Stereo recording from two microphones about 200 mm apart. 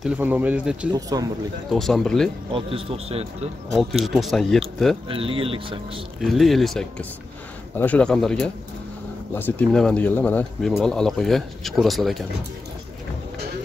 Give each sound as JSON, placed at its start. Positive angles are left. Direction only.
{"t": 0.0, "sound": "speech", "side_deg": -10}
{"t": 1.1, "sound": "speech", "side_deg": -15}
{"t": 1.7, "sound": "speech", "side_deg": 0}
{"t": 2.5, "sound": "speech", "side_deg": -30}
{"t": 3.7, "sound": "speech", "side_deg": 0}
{"t": 5.0, "sound": "speech", "side_deg": -25}
{"t": 6.2, "sound": "speech", "side_deg": 0}